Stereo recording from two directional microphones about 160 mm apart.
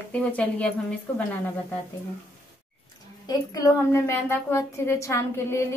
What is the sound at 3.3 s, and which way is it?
A woman's voice, 20° left (ahead or behind).